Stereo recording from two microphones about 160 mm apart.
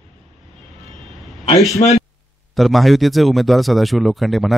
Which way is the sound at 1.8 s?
30° left (ahead or behind).